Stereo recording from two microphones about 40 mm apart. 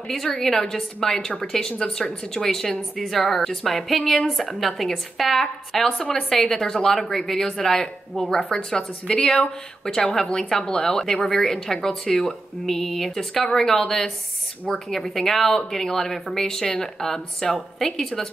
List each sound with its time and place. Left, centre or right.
0.4 s a woman's voice: centre